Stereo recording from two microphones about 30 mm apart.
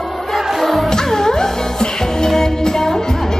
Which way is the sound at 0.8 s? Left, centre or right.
Centre.